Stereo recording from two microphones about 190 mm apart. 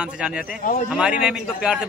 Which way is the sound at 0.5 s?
45° left (ahead or behind).